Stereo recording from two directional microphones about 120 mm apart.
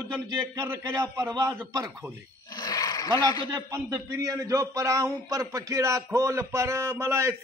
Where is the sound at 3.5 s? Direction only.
25° right (ahead or behind).